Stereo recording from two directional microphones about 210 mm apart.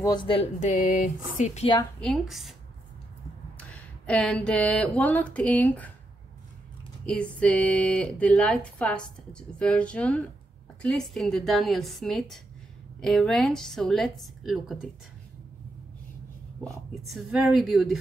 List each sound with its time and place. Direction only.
0.0 s speech: 20° left (ahead or behind)
2.0 s speech: centre (ahead or behind)
3.5 s speech: 5° left (ahead or behind)
7.1 s speech: 5° left (ahead or behind)
16.9 s speech: centre (ahead or behind)